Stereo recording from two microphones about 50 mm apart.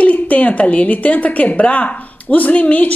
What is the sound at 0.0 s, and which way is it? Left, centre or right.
Speech, left.